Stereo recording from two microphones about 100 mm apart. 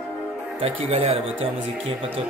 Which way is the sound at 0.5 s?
90° right.